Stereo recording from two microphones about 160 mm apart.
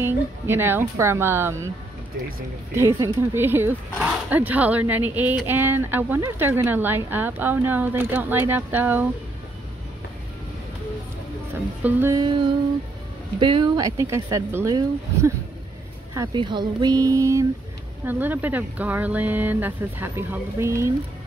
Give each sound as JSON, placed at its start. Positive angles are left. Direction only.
{"t": 0.0, "sound": "speech", "side_deg": -15}
{"t": 3.0, "sound": "speech", "side_deg": -15}
{"t": 11.8, "sound": "speech", "side_deg": -15}
{"t": 12.2, "sound": "speech", "side_deg": -30}
{"t": 16.3, "sound": "speech", "side_deg": -30}